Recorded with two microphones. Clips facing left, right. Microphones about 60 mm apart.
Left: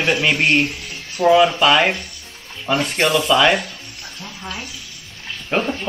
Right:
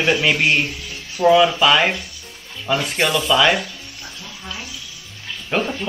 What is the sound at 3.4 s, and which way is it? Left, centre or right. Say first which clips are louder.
Speech: left 1 dB; centre.